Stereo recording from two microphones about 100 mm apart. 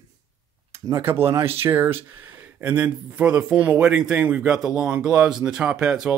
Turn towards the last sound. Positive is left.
turn(degrees=-5)  # may be behind; listen again after turning